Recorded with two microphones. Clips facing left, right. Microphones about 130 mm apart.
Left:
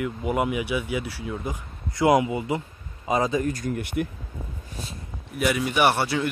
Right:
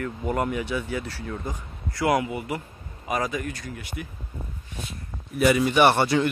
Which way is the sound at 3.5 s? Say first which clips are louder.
Left 8 dB; 45° left (ahead or behind).